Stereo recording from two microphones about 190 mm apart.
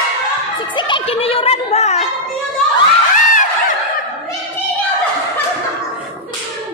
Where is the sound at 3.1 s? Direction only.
45° left (ahead or behind).